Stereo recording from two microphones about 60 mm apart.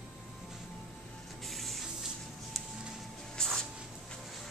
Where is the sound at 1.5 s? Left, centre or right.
Centre.